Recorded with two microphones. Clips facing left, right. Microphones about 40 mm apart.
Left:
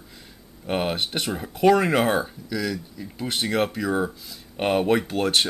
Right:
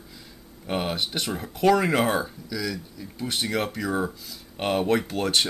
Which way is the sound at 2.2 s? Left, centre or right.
Left.